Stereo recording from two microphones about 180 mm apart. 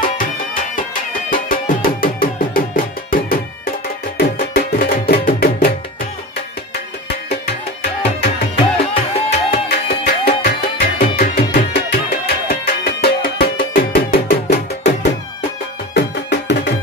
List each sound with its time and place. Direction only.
1.3 s music: 50° left (ahead or behind)
8.7 s music: 35° left (ahead or behind)
9.5 s music: 60° left (ahead or behind)
15.9 s music: 70° left (ahead or behind)